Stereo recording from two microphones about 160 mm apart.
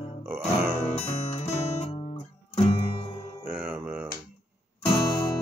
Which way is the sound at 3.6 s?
10° right (ahead or behind).